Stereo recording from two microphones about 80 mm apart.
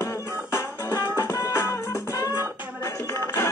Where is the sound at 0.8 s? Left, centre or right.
Left.